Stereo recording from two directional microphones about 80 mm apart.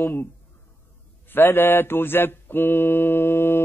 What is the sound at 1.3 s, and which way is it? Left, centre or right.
Mantra, left.